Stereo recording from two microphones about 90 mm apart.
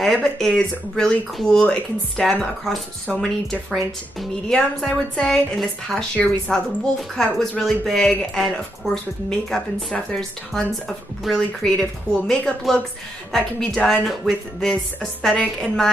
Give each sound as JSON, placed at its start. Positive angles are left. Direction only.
{"t": 0.0, "sound": "a woman's voice", "side_deg": 5}